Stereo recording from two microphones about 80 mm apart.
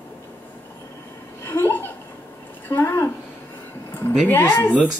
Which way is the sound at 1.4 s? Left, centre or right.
Left.